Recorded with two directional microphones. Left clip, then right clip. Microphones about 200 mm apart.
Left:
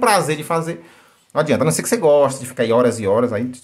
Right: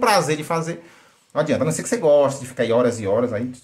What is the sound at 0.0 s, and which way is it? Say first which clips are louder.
Speech: left 2 dB; 15° left (ahead or behind).